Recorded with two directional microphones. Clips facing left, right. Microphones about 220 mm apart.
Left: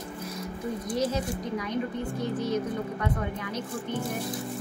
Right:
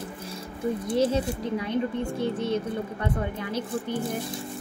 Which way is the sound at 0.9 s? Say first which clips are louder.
Right 4 dB; 30° right (ahead or behind).